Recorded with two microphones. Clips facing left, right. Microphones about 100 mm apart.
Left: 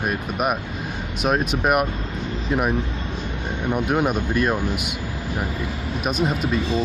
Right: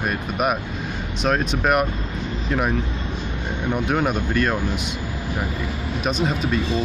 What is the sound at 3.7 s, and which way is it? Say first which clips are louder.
Speech: left 1 dB; 5° left (ahead or behind).